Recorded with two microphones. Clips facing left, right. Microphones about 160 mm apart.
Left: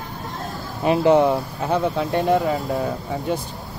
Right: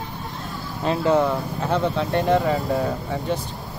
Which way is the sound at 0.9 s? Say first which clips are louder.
Left 4 dB; 20° left (ahead or behind).